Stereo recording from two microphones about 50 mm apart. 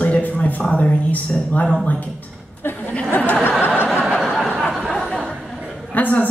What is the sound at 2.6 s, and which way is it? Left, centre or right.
Speech, left.